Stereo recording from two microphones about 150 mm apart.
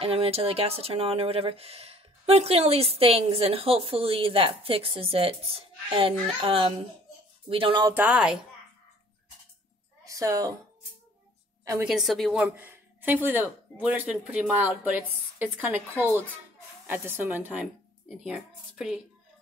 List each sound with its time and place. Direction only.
0.0 s speech: 40° right (ahead or behind)
7.9 s speech: 10° right (ahead or behind)
10.0 s a woman's voice: 20° right (ahead or behind)
11.8 s a woman's voice: 5° right (ahead or behind)
12.5 s speech: 15° right (ahead or behind)